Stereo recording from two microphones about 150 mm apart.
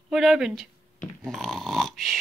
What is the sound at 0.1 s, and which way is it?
Speech, 5° right (ahead or behind).